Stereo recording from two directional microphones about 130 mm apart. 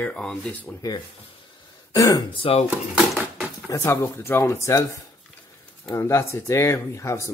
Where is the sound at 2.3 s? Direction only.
45° left (ahead or behind).